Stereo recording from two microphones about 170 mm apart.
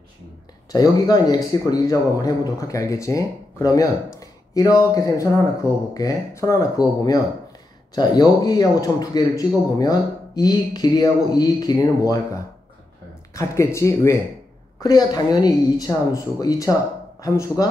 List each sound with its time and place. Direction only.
0.7 s speech: 20° left (ahead or behind)
13.3 s speech: 20° left (ahead or behind)